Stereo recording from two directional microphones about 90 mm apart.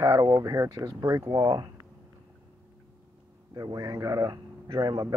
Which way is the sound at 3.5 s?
45° right (ahead or behind).